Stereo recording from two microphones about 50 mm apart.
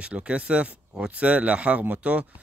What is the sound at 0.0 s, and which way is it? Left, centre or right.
Speech, right.